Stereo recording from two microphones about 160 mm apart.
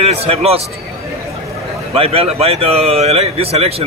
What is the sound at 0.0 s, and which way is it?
Speech, 40° right (ahead or behind).